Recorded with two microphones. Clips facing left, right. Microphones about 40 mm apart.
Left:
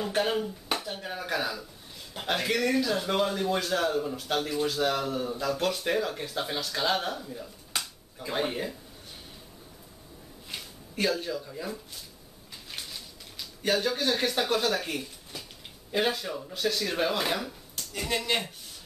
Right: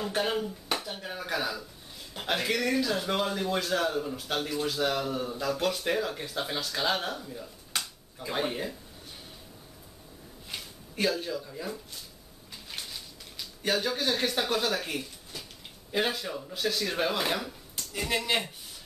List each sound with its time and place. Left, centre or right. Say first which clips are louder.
0.0 s speech: left 2 dB; centre
10.5 s speech: left 1 dB; centre
12.7 s a sound: even; centre
15.9 s speech: left 1 dB; centre